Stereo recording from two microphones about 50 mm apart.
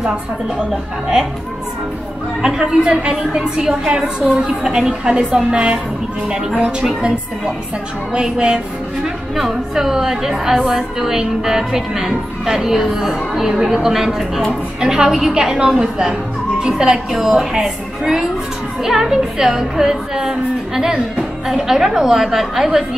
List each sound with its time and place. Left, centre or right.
2.4 s a woman's voice: centre